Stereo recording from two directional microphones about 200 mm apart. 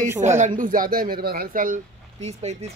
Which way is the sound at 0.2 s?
35° right (ahead or behind).